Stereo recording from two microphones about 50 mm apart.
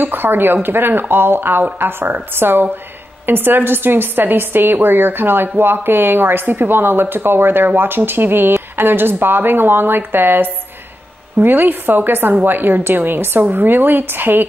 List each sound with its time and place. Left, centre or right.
0.0 s a woman's voice: right